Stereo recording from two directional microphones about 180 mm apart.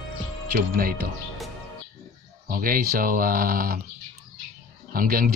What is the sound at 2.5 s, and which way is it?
A man's voice, 50° right (ahead or behind).